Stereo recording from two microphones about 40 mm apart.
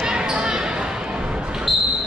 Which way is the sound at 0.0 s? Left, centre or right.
Right.